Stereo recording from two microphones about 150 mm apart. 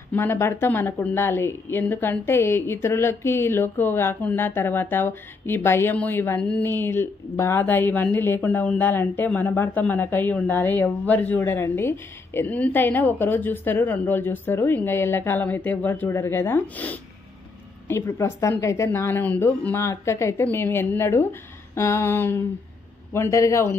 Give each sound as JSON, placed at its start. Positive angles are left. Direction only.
{"t": 0.1, "sound": "a woman's voice", "side_deg": 15}